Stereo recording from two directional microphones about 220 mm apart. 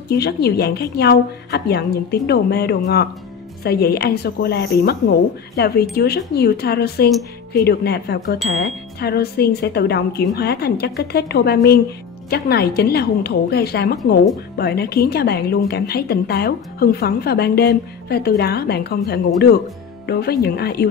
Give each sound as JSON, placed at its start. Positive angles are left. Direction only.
{"t": 0.1, "sound": "a woman's voice", "side_deg": 45}